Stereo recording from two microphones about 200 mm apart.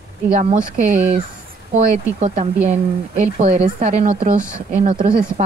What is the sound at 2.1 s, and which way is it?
Speech, 40° right (ahead or behind).